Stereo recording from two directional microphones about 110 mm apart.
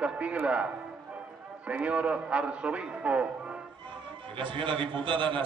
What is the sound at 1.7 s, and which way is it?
A man's voice, 10° right (ahead or behind).